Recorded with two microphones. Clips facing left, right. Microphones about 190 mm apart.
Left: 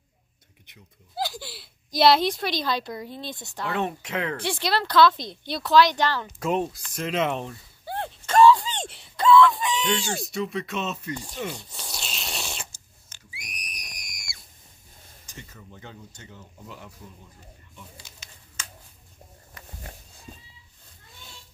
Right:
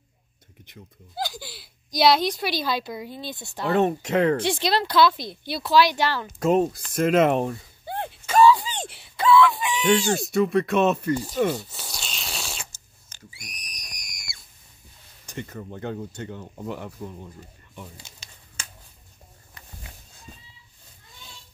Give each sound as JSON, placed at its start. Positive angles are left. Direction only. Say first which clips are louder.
{"t": 1.1, "sound": "speech", "louder": "left 1 dB", "side_deg": 0}
{"t": 3.6, "sound": "speech", "louder": "right 7 dB", "side_deg": -40}
{"t": 4.5, "sound": "speech", "louder": "right 3 dB", "side_deg": -15}
{"t": 6.4, "sound": "speech", "louder": "right 6 dB", "side_deg": -45}
{"t": 7.8, "sound": "a sound", "louder": "even", "side_deg": -15}
{"t": 8.3, "sound": "a sound", "louder": "even", "side_deg": -5}
{"t": 10.3, "sound": "speech", "louder": "right 10 dB", "side_deg": -55}
{"t": 11.3, "sound": "speech", "louder": "right 11 dB", "side_deg": -45}
{"t": 11.7, "sound": "a sound", "louder": "even", "side_deg": 0}
{"t": 13.5, "sound": "screaming", "louder": "left 2 dB", "side_deg": 5}
{"t": 15.2, "sound": "speech", "louder": "right 11 dB", "side_deg": -65}
{"t": 18.0, "sound": "a sound", "louder": "right 1 dB", "side_deg": -30}